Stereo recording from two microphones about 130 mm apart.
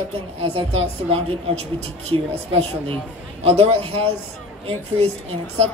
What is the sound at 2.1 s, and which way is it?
Speech, 45° right (ahead or behind).